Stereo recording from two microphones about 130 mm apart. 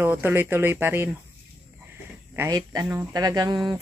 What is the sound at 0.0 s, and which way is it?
Speech, 15° right (ahead or behind).